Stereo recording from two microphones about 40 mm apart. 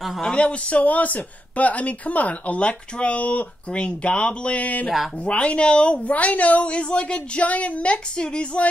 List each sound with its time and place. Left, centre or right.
0.4 s speech: left
3.7 s speech: left
5.4 s speech: left